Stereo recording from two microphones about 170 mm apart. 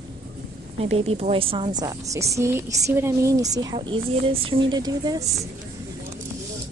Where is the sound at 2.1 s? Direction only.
20° right (ahead or behind).